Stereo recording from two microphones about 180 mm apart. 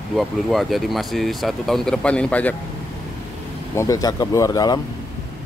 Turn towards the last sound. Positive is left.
turn(degrees=20)  # may be behind; listen again after turning